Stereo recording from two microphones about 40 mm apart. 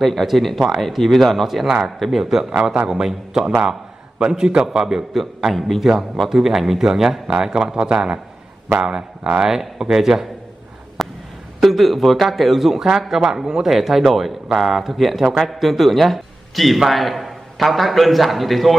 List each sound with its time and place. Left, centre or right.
0.0 s a man's voice: centre
5.1 s a man's voice: centre
11.0 s a sound: centre
11.6 s a man's voice: centre